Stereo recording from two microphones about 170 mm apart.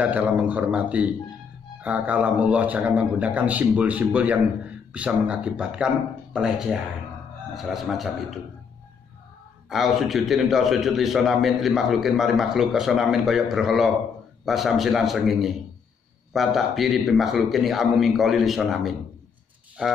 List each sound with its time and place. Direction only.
0.0 s a man's voice: 10° right (ahead or behind)
9.7 s a man's voice: centre (ahead or behind)